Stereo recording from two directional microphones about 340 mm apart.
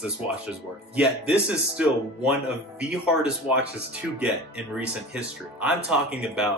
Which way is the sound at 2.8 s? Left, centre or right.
Centre.